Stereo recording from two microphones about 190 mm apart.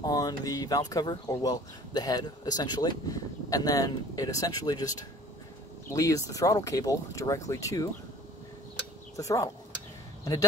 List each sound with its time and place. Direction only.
0.0 s speech: 20° left (ahead or behind)
9.1 s speech: 20° left (ahead or behind)